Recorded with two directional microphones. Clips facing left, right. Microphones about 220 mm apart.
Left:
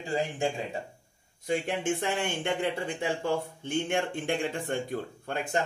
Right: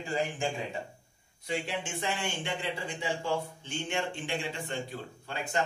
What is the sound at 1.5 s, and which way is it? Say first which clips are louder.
Speech: left 6 dB; 55° left (ahead or behind).